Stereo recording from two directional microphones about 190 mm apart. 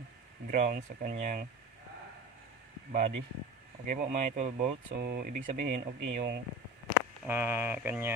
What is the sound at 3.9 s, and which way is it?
A man's voice, 40° right (ahead or behind).